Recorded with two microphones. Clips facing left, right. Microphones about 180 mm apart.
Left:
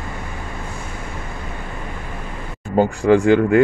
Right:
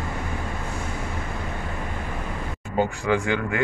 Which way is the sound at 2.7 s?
45° left (ahead or behind).